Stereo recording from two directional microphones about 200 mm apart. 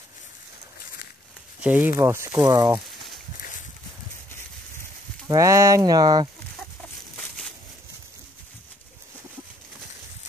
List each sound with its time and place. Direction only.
1.6 s speech: 10° right (ahead or behind)
5.3 s speech: 15° right (ahead or behind)